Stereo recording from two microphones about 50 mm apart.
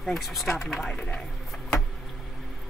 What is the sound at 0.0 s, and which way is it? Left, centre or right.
Speech, centre.